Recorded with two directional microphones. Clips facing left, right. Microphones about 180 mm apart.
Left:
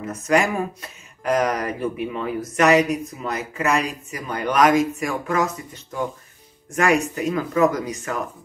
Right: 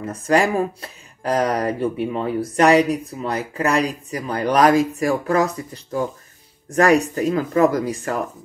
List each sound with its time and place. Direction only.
0.0 s speech: 30° right (ahead or behind)